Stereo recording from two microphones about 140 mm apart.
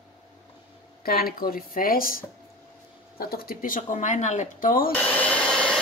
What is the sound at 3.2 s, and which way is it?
Speech, 90° left.